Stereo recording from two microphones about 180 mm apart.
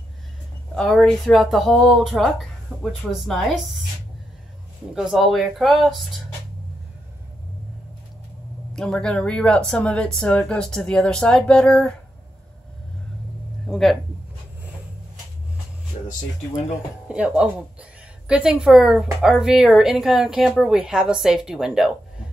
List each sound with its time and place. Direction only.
0.7 s speech: 5° left (ahead or behind)
4.9 s speech: centre (ahead or behind)
8.7 s speech: 5° left (ahead or behind)
13.7 s speech: centre (ahead or behind)
17.1 s speech: 5° right (ahead or behind)